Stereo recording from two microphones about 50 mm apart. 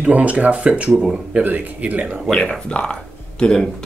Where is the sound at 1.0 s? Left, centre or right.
Centre.